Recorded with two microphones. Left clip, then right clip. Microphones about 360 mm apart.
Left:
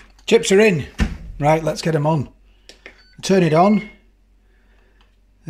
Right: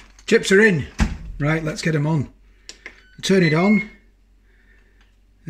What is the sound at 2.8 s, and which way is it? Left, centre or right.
Cash register, centre.